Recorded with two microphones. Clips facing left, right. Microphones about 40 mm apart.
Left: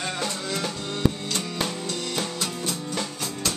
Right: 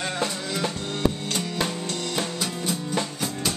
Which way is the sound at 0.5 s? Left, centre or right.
Centre.